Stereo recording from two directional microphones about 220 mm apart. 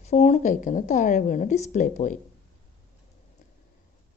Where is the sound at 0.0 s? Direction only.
30° left (ahead or behind).